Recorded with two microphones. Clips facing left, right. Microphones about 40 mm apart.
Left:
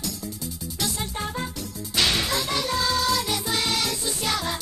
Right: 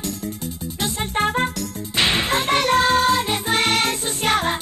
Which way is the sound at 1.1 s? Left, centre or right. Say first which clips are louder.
Right 10 dB; right.